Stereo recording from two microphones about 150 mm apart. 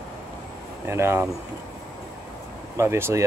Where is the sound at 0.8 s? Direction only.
15° right (ahead or behind).